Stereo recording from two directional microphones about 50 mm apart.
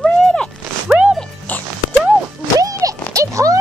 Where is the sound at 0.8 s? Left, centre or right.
Right.